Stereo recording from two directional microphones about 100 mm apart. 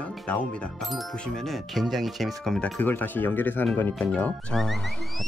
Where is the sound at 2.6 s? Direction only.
15° left (ahead or behind).